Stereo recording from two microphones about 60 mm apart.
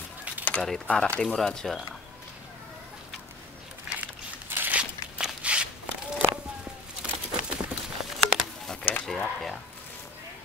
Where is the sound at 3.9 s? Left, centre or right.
Centre.